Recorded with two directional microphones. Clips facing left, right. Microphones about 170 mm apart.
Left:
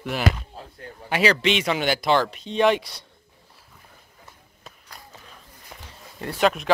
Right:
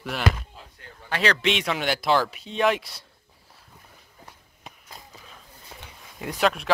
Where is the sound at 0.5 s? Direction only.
35° left (ahead or behind).